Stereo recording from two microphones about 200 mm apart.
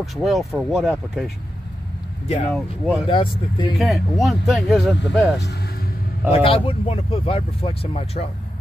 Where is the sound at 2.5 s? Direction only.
5° right (ahead or behind).